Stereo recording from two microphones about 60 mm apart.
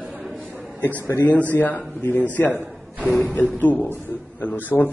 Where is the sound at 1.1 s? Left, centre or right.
Left.